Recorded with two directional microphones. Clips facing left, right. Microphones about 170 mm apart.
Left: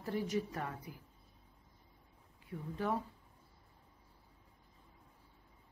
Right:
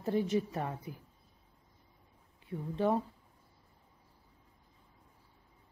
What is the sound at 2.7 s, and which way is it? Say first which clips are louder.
Speech: right 6 dB; 25° right (ahead or behind).